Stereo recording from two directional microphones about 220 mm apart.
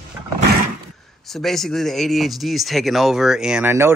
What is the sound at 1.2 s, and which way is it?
Speech, centre (ahead or behind).